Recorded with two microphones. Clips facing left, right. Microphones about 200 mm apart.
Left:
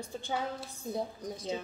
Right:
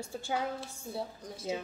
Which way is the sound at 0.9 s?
20° left (ahead or behind).